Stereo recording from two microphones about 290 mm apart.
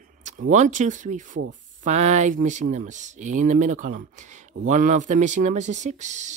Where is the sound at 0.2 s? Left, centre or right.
Right.